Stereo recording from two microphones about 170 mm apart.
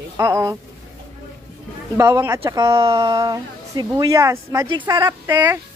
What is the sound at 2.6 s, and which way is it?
Speech, 30° right (ahead or behind).